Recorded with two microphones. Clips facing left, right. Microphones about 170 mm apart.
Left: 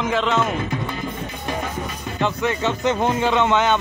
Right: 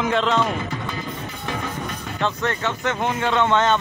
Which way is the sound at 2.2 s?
15° left (ahead or behind).